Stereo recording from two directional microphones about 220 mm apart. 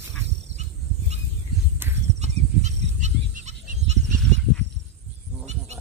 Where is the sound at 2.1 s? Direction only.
30° right (ahead or behind).